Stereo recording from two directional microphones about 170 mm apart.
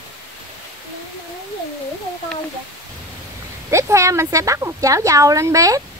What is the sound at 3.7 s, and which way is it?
Speech, 20° right (ahead or behind).